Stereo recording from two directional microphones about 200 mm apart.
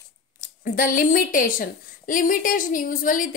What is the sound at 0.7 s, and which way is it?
A woman's voice, 45° left (ahead or behind).